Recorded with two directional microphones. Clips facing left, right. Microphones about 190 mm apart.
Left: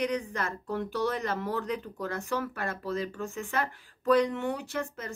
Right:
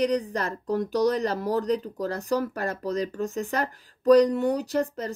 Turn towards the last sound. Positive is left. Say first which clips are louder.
# right 8 dB
turn(degrees=-35)  # may be behind; listen again after turning